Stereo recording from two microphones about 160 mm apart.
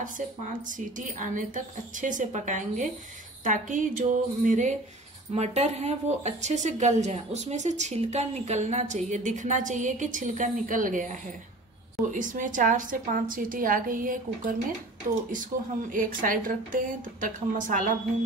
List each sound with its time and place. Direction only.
0.2 s a woman's voice: 50° right (ahead or behind)